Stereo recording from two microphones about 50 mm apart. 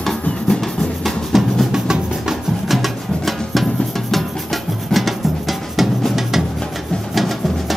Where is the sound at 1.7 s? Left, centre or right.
Centre.